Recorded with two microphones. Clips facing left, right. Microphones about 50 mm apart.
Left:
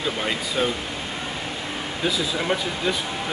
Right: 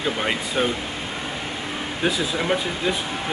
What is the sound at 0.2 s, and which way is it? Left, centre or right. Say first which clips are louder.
Speech: even; centre.